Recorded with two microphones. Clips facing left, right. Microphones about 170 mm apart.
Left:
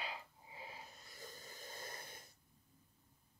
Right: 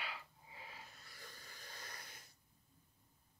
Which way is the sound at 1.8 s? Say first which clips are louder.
Left 5 dB; 25° left (ahead or behind).